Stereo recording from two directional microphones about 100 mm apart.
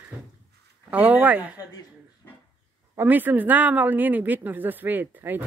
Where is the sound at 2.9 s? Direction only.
20° right (ahead or behind).